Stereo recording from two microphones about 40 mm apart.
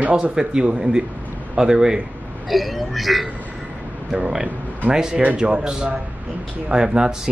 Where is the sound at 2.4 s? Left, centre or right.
Centre.